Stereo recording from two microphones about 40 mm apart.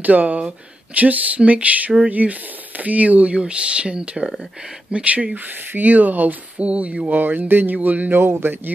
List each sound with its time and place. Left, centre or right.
0.0 s speech: right
3.3 s speech: right
6.6 s speech: right
7.1 s speech: right
8.1 s speech: right